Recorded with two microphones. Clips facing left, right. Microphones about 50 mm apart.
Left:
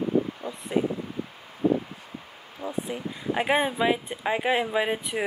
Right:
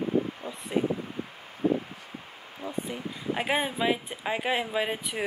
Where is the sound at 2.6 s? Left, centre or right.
Left.